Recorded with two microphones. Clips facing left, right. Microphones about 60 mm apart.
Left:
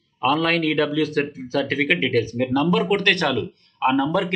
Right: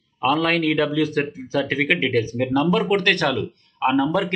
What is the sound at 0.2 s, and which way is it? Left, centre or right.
Speech, centre.